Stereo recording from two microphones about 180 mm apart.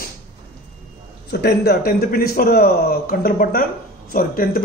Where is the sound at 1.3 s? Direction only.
65° left (ahead or behind).